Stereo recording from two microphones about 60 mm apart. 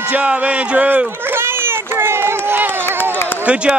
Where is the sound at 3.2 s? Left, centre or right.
Left.